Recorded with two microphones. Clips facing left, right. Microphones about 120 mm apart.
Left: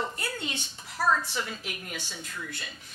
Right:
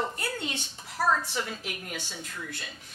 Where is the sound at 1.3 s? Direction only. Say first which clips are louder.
Right 1 dB; 45° right (ahead or behind).